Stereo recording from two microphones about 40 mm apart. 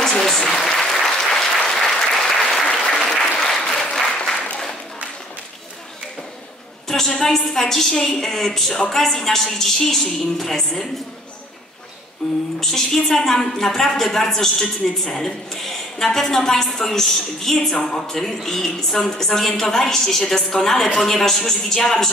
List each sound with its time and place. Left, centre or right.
0.0 s applause: centre
6.9 s a woman's voice: centre
12.2 s a woman's voice: centre